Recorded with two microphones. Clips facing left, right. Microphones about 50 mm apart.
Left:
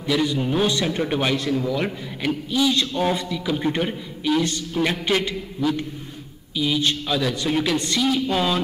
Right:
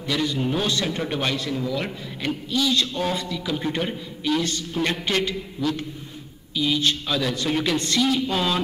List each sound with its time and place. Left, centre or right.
0.0 s a man's voice: centre